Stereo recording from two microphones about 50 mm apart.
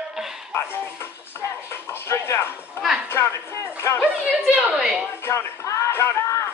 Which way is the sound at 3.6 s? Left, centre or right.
Left.